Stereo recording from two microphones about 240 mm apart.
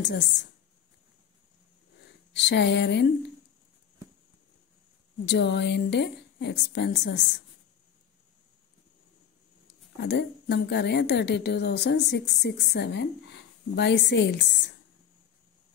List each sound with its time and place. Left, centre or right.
0.0 s a woman's voice: left
2.0 s speech: left
5.2 s a woman's voice: left
9.9 s a woman's voice: left